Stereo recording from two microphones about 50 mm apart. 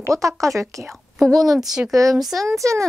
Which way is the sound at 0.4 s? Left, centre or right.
Right.